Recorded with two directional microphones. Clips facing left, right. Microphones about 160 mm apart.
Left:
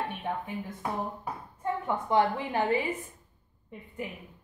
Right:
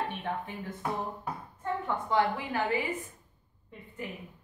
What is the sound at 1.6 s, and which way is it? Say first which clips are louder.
A woman's voice: left 2 dB; 15° left (ahead or behind).